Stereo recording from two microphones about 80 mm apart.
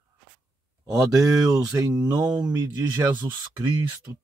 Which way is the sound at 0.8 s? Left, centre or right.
Right.